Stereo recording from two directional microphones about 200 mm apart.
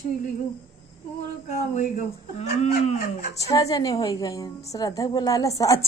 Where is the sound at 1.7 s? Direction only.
35° left (ahead or behind).